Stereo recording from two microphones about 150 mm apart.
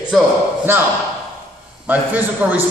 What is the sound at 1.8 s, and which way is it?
Speech, 10° right (ahead or behind).